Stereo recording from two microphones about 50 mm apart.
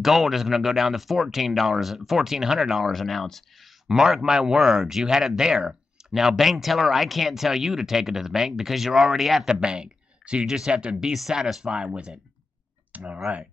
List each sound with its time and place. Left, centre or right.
0.0 s speech: centre
3.9 s speech: centre; by 13.2 s right